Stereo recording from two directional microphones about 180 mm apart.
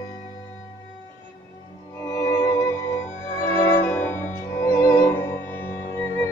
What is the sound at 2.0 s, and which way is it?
Music, 15° left (ahead or behind).